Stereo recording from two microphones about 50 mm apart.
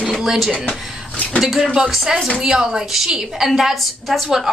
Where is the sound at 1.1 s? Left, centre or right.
Left.